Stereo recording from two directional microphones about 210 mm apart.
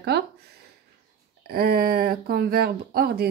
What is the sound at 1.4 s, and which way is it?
Speech, 45° right (ahead or behind).